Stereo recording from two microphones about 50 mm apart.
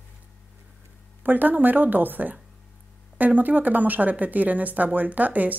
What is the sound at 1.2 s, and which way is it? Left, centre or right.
Speech, right.